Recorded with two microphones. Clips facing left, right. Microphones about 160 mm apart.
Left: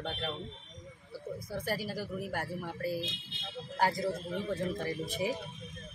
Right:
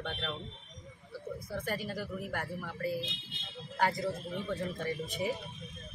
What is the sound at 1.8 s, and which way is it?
Speech, 35° left (ahead or behind).